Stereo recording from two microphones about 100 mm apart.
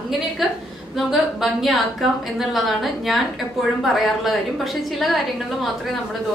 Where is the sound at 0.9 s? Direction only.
Centre (ahead or behind).